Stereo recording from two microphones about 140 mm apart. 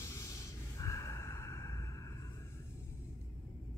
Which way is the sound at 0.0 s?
20° left (ahead or behind).